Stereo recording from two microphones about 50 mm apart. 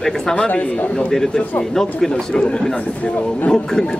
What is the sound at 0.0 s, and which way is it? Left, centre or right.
Speech, centre.